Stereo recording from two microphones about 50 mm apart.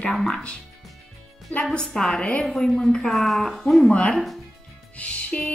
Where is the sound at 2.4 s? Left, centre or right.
Centre.